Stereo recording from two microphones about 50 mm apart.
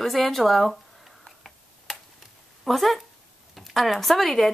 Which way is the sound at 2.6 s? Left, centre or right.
Centre.